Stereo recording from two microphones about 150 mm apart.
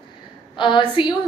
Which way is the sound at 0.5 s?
30° left (ahead or behind).